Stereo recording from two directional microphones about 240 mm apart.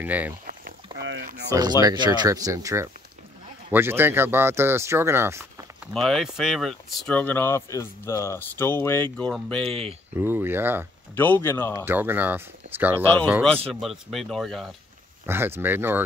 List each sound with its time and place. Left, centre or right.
0.0 s speech: centre
0.9 s a sound: right
1.5 s speech: centre
5.9 s speech: centre
10.1 s speech: centre
11.1 s speech: centre
11.8 s speech: centre
12.9 s speech: centre
13.5 s speech: right
13.7 s speech: centre